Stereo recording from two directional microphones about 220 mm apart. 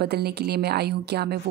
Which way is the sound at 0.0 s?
45° right (ahead or behind).